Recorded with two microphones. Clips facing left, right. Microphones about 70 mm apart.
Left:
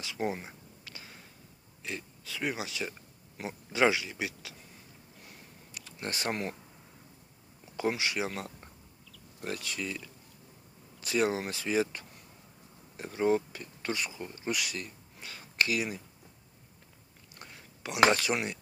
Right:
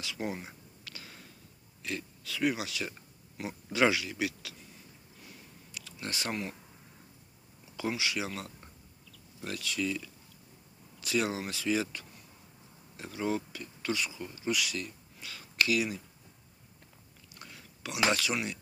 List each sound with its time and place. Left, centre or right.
0.0 s speech: left
0.4 s a sound: centre
1.8 s speech: centre
5.8 s speech: left
7.7 s speech: left
14.5 s speech: left
17.4 s chewing: left
18.1 s speech: left